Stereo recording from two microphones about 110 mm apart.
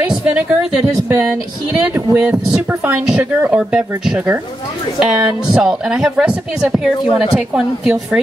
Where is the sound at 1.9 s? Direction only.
15° right (ahead or behind).